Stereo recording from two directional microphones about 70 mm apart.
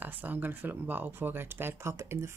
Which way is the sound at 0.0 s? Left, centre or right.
Right.